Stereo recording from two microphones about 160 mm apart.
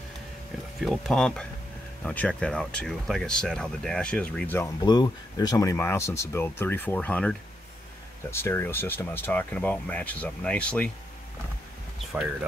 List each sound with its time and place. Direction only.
0.7 s speech: centre (ahead or behind)
4.8 s speech: 25° left (ahead or behind); by 10.9 s 10° left (ahead or behind)
12.1 s speech: 5° right (ahead or behind)